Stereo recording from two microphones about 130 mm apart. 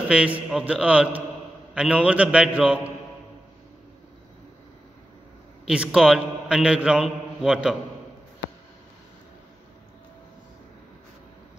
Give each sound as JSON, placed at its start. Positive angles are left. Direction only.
{"t": 0.1, "sound": "a man's voice", "side_deg": -10}
{"t": 5.7, "sound": "a man's voice", "side_deg": -5}